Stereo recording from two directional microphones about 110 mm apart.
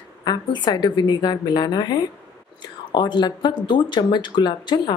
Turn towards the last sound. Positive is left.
turn(degrees=45)  # may be behind; listen again after turning